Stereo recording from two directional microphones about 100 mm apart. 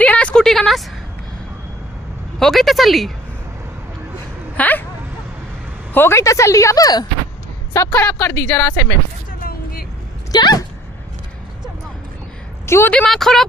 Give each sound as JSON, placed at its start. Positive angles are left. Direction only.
{"t": 0.0, "sound": "vehicle", "side_deg": 10}
{"t": 2.3, "sound": "speech", "side_deg": 0}
{"t": 4.6, "sound": "speech", "side_deg": 15}
{"t": 5.9, "sound": "a woman's voice", "side_deg": 25}
{"t": 10.3, "sound": "speech", "side_deg": 45}
{"t": 12.6, "sound": "a woman's voice", "side_deg": 25}
{"t": 13.1, "sound": "speech", "side_deg": 0}